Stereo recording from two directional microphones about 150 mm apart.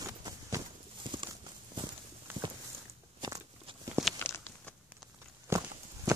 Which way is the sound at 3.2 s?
25° right (ahead or behind).